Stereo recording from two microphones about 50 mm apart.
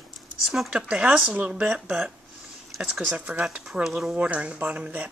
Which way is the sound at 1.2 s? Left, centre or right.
Right.